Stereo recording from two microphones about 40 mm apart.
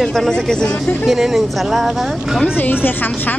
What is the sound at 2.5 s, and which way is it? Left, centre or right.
Speech, left.